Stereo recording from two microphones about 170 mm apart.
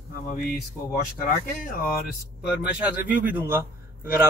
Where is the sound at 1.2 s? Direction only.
60° left (ahead or behind).